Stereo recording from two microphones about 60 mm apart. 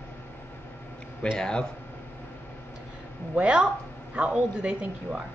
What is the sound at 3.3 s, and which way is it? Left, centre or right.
A woman's voice, centre.